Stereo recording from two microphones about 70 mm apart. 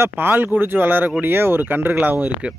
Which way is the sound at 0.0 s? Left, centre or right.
Right.